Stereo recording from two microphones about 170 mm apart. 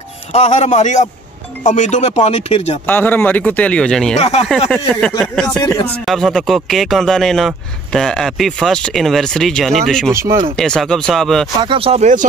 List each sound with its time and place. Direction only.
0.3 s speech: 40° left (ahead or behind)
2.9 s speech: 10° left (ahead or behind)
4.2 s speech: 40° left (ahead or behind)
4.5 s speech: 5° left (ahead or behind)
11.6 s speech: 30° right (ahead or behind)